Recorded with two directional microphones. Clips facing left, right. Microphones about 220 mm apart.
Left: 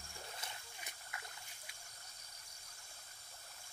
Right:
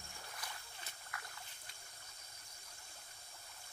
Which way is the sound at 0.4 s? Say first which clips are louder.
Even; 20° left (ahead or behind).